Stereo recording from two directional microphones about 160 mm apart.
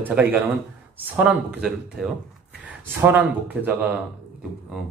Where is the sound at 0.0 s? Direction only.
10° right (ahead or behind).